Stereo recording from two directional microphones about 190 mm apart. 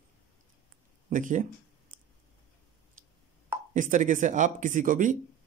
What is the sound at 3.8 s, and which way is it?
Speech, 45° right (ahead or behind).